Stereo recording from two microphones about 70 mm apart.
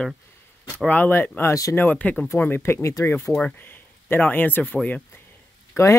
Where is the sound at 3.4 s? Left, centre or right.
Left.